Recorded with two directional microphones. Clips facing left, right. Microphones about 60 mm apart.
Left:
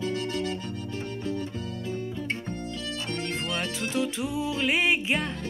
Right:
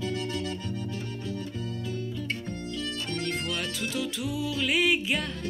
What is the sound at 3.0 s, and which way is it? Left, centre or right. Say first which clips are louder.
Music: left 1 dB; left.